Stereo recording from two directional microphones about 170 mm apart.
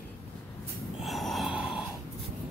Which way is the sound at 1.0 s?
Centre (ahead or behind).